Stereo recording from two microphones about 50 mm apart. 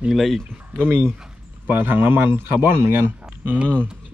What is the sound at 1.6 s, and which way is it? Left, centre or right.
Speech, right.